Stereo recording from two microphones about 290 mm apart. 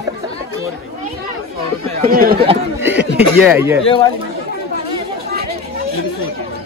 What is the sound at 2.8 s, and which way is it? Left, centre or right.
Chuckle, centre.